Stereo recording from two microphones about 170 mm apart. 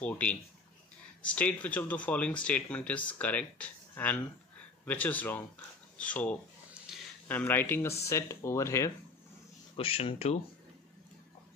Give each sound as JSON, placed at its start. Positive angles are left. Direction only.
{"t": 0.0, "sound": "speech", "side_deg": 10}
{"t": 9.8, "sound": "speech", "side_deg": 35}